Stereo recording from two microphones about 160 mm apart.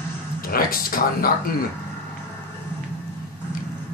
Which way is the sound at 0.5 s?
65° left (ahead or behind).